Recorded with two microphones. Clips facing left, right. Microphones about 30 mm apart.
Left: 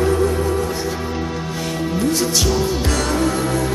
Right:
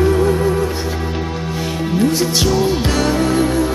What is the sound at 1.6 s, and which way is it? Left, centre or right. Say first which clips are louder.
Music: right 4 dB; centre.